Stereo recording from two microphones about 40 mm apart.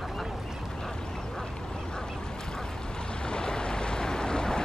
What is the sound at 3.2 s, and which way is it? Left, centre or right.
Boat, left.